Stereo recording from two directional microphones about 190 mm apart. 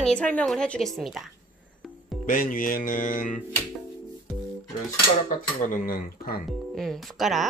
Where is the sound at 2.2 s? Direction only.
45° left (ahead or behind).